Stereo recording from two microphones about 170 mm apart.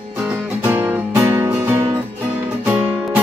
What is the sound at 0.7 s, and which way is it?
Music, 10° right (ahead or behind).